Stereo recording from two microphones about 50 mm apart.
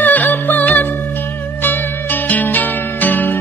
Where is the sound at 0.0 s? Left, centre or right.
Left.